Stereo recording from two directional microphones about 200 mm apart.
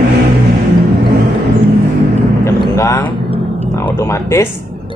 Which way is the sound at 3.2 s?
30° right (ahead or behind).